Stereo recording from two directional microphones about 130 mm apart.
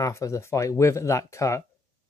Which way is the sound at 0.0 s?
25° left (ahead or behind).